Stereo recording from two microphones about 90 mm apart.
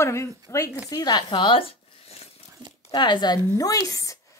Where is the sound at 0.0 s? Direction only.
30° left (ahead or behind).